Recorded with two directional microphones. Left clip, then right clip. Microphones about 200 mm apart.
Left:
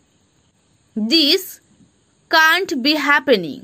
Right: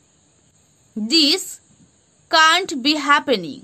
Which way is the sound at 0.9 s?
15° left (ahead or behind).